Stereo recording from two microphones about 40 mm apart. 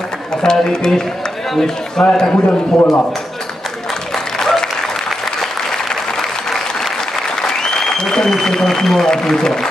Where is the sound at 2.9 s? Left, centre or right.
Centre.